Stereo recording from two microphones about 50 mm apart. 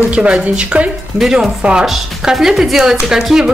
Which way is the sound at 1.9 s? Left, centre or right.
Centre.